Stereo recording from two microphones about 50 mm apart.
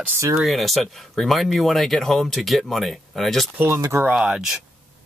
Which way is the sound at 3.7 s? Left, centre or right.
Right.